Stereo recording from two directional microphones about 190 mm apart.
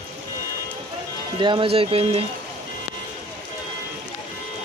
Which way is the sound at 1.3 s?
25° right (ahead or behind).